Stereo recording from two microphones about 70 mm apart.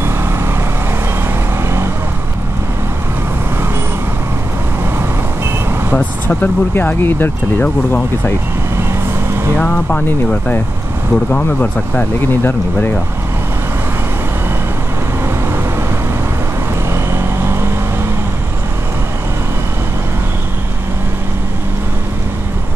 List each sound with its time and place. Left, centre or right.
5.9 s speech: left
9.6 s speech: left
16.9 s vehicle: right